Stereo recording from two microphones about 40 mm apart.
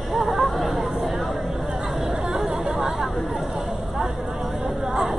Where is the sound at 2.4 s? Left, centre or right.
Centre.